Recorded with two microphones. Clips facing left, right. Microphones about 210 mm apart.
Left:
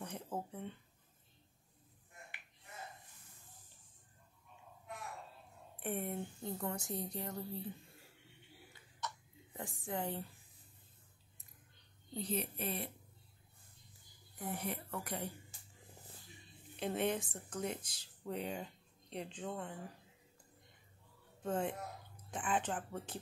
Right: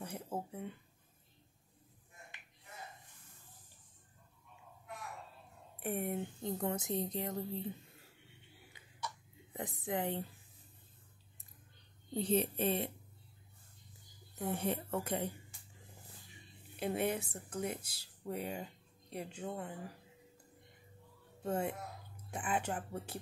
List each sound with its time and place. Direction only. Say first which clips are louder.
0.0 s a sound: right 1 dB; 10° right (ahead or behind)
5.8 s speech: right 3 dB; 10° right (ahead or behind)
8.7 s a sound: right 1 dB; 20° right (ahead or behind)
12.1 s speech: right 7 dB; 30° right (ahead or behind)
14.5 s speech: right 6 dB; 25° right (ahead or behind)
16.7 s speech: right 1 dB; 10° right (ahead or behind)
21.4 s speech: right 1 dB; 10° right (ahead or behind)